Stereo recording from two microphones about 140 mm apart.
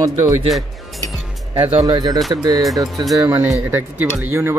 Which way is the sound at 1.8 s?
30° right (ahead or behind).